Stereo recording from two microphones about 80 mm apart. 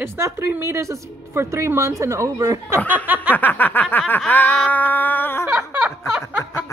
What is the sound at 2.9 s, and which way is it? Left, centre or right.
Snicker, right.